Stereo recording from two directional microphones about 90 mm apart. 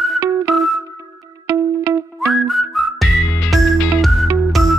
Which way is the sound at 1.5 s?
35° right (ahead or behind).